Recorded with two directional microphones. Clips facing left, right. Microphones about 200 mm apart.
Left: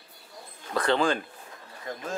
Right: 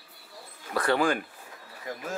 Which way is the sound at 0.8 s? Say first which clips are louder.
Even; 20° left (ahead or behind).